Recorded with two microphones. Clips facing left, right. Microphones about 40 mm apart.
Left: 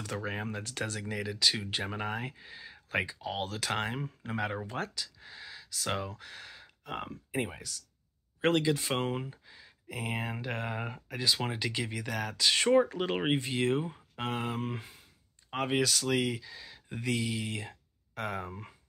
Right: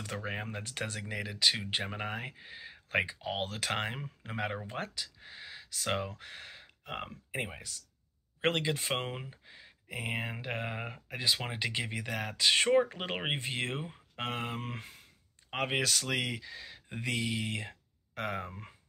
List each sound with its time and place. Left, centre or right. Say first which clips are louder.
0.0 s speech: left 2 dB; right
1.9 s speech: left 2 dB; centre
11.5 s speech: even; right